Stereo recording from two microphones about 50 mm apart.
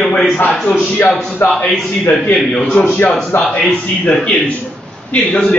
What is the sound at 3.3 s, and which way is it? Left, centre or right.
Speech, left.